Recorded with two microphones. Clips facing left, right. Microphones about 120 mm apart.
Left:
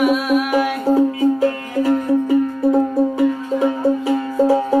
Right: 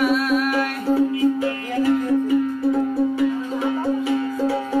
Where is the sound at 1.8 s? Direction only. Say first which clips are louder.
Left 2 dB; 40° left (ahead or behind).